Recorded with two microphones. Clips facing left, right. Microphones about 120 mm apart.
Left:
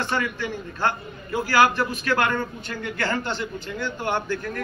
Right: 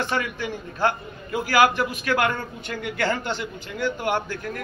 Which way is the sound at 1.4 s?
15° right (ahead or behind).